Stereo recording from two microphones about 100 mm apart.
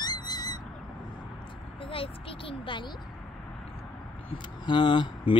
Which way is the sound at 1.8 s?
65° left (ahead or behind).